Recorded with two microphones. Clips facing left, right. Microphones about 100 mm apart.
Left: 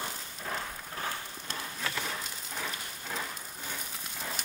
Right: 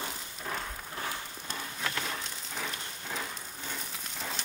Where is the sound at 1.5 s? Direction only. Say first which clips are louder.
Right 1 dB; 5° left (ahead or behind).